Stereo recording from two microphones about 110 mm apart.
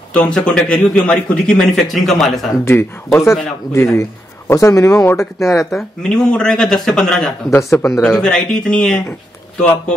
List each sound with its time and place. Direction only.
0.1 s a man's voice: 10° left (ahead or behind)
2.6 s a man's voice: 25° left (ahead or behind)
5.7 s speech: 5° left (ahead or behind)
7.5 s a man's voice: 25° left (ahead or behind)
8.0 s a man's voice: 5° left (ahead or behind)